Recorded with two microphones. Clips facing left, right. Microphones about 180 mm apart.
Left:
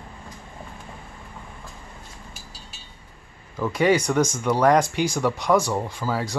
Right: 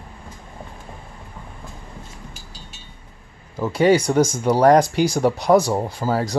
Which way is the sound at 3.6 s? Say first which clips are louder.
Right 4 dB; 30° right (ahead or behind).